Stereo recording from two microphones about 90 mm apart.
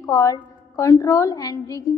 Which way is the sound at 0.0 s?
35° left (ahead or behind).